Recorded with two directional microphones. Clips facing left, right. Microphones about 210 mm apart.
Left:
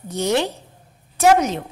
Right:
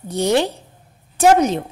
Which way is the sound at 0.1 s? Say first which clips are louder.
Right 3 dB; 30° right (ahead or behind).